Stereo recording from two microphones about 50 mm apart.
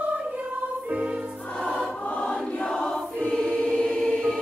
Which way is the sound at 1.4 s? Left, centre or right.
Centre.